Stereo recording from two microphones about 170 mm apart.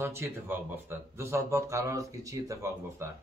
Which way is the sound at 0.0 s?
15° right (ahead or behind).